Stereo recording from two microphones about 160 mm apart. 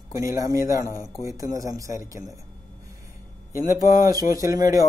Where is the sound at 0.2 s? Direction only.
20° right (ahead or behind).